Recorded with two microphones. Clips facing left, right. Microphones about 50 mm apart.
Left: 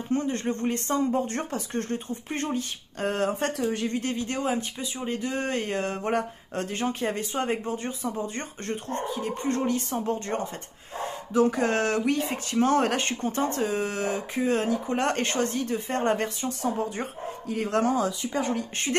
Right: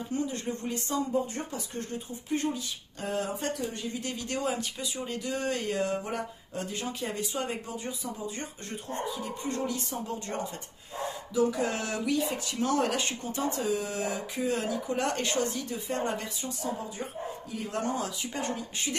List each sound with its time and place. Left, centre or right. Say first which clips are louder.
0.1 s speech: left 6 dB; left
3.5 s speech: left 7 dB; left
4.0 s speech: left 4 dB; left
6.0 s speech: left 8 dB; left